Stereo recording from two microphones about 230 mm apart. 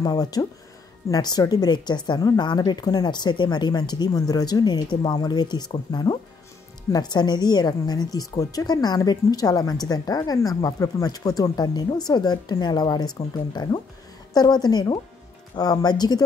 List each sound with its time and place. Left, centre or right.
0.0 s a woman's voice: centre